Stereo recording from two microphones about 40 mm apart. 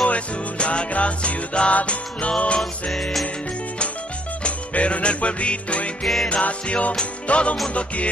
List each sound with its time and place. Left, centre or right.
0.0 s music: left
2.6 s music: centre
4.4 s music: left